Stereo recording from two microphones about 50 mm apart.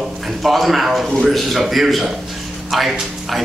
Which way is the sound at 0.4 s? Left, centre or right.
Centre.